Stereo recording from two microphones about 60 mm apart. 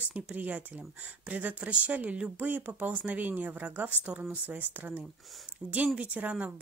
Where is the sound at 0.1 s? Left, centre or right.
Right.